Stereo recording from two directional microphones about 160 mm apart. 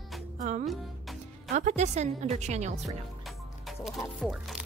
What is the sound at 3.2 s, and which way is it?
Music, centre (ahead or behind).